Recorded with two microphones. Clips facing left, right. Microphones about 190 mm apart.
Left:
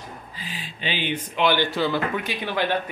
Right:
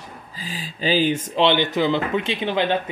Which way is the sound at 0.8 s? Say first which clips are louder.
Right 8 dB; 40° right (ahead or behind).